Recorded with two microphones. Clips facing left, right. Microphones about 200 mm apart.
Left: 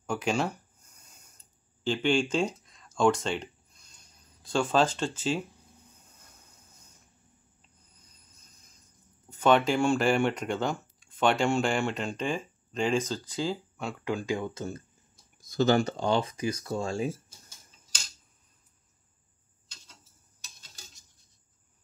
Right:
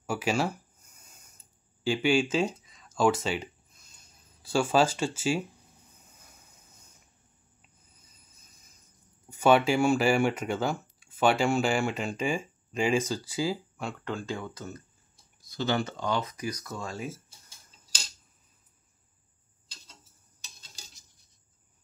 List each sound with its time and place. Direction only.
0.0 s speech: 5° right (ahead or behind)
1.4 s a sound: 10° right (ahead or behind)
7.9 s vehicle: 5° right (ahead or behind)
9.3 s speech: 10° right (ahead or behind); by 14.8 s 25° left (ahead or behind)
15.4 s speech: 45° left (ahead or behind)
16.0 s speech: 30° left (ahead or behind)